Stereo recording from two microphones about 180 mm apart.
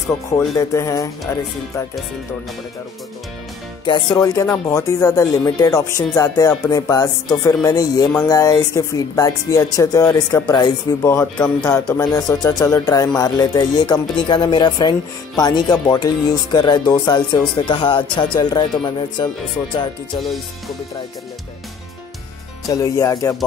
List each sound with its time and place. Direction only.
0.6 s speech: 20° left (ahead or behind)
3.8 s speech: 25° left (ahead or behind)
22.7 s speech: 20° left (ahead or behind)